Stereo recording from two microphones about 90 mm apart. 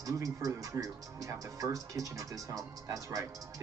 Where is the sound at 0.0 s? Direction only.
40° right (ahead or behind).